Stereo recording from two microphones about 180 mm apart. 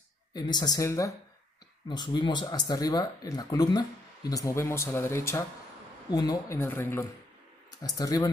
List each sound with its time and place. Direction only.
0.3 s speech: 25° left (ahead or behind)